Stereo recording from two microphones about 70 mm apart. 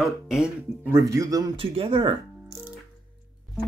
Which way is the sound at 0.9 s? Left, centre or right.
Right.